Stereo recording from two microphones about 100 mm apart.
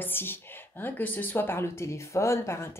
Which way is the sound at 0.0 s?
20° left (ahead or behind).